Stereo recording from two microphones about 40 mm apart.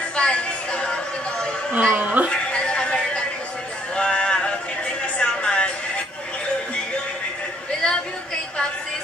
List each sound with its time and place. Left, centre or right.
0.1 s music: left
1.7 s a woman's voice: right
2.5 s music: left
3.9 s a sound: left